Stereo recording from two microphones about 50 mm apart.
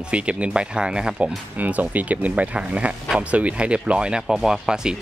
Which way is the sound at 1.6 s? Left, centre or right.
Right.